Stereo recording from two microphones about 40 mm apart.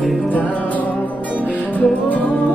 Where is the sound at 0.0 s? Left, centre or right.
Centre.